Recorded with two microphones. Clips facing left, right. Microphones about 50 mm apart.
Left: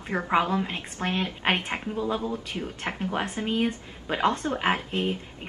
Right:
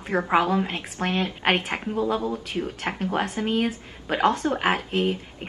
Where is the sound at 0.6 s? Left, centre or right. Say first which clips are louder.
Right 3 dB; right.